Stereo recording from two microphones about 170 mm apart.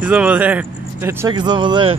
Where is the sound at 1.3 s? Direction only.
25° right (ahead or behind).